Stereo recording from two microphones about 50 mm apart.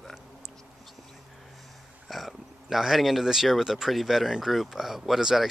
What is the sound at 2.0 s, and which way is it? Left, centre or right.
Speech, centre.